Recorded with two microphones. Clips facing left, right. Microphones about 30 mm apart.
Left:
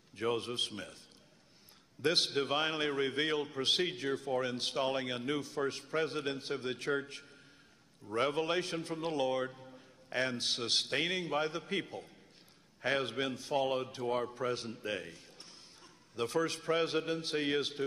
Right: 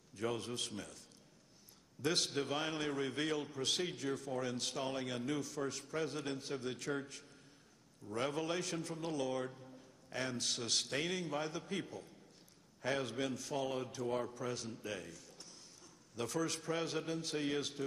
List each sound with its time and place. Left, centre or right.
0.1 s a man's voice: left
2.0 s a man's voice: left